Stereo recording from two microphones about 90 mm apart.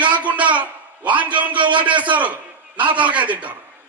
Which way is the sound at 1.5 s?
60° right (ahead or behind).